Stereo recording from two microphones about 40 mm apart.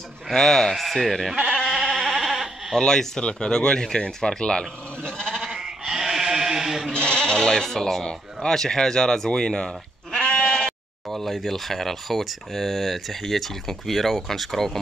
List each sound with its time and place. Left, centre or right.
0.3 s speech: centre
0.7 s speech: centre
1.7 s bleat: centre
2.8 s speech: centre
5.5 s sheep: centre
6.9 s speech: left
10.1 s bleat: left
11.1 s speech: centre